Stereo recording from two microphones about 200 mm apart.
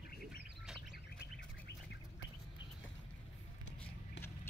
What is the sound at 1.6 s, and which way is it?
Bird, 60° left (ahead or behind).